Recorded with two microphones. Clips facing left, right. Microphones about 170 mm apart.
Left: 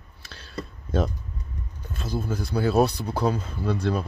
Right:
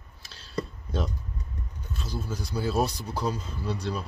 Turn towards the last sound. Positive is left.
turn(degrees=55)  # may be behind; listen again after turning